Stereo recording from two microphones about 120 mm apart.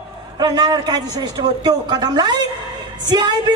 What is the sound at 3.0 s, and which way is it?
Music, 35° right (ahead or behind).